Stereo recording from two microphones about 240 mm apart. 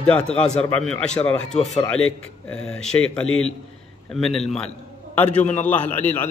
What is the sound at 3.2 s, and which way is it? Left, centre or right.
Speech, left.